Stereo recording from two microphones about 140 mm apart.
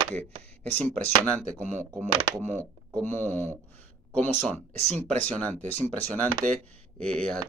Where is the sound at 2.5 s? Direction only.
15° left (ahead or behind).